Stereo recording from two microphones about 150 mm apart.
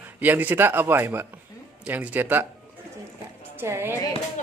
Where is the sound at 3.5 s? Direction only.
15° right (ahead or behind).